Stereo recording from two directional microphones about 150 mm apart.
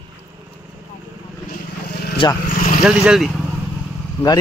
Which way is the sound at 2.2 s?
30° left (ahead or behind).